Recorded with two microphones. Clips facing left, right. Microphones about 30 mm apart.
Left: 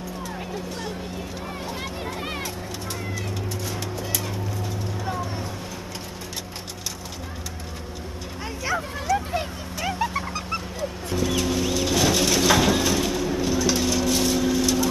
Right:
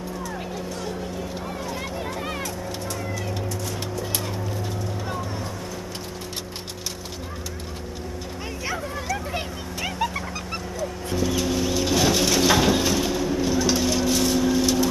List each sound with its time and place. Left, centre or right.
2.1 s a sound: centre
11.1 s bird: centre
13.6 s vehicle: centre
14.1 s vehicle: centre